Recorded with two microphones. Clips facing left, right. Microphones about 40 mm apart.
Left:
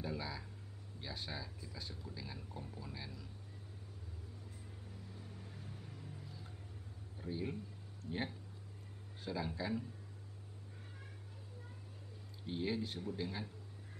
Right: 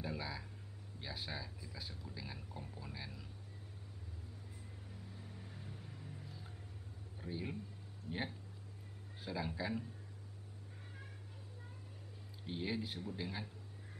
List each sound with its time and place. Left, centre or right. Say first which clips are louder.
0.0 s a sound: left 1 dB; centre
1.0 s speech: even; centre
5.1 s vehicle: even; centre
7.2 s a man's voice: left 2 dB; centre
12.4 s speech: left 2 dB; centre